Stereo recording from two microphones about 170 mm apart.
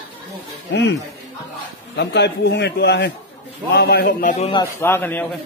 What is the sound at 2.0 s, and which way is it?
A man's voice, 85° left.